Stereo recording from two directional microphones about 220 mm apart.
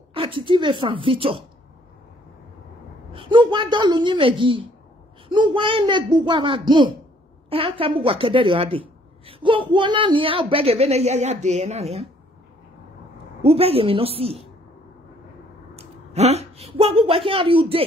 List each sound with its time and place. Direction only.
0.1 s a woman's voice: 25° right (ahead or behind)
3.1 s a woman's voice: 25° right (ahead or behind)
13.4 s a woman's voice: 25° right (ahead or behind)
15.7 s a woman's voice: 30° right (ahead or behind)